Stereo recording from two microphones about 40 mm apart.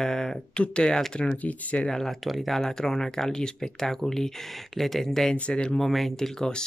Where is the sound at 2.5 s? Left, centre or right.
Centre.